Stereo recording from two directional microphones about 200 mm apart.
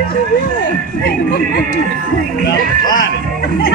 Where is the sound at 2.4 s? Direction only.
45° left (ahead or behind).